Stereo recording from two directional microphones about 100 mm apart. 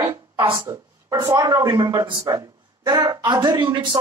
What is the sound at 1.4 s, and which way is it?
Speech, 35° right (ahead or behind).